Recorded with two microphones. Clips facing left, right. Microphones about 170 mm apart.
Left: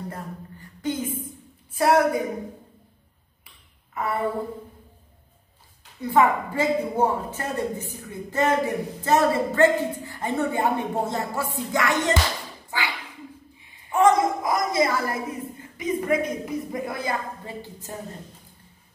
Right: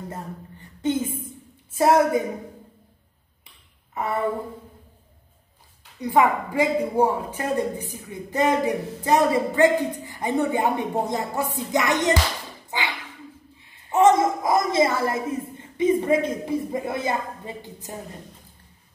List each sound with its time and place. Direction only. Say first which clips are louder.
0.1 s a sound: right 1 dB; 25° right (ahead or behind)
1.7 s a woman's voice: right 1 dB; 20° right (ahead or behind)
5.9 s a woman's voice: even; 15° right (ahead or behind)